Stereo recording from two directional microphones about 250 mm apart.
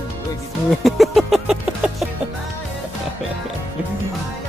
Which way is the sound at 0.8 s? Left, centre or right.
Centre.